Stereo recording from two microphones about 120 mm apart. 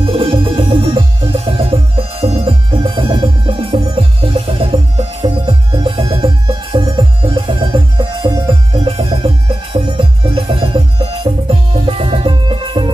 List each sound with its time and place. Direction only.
0.0 s music: 50° right (ahead or behind)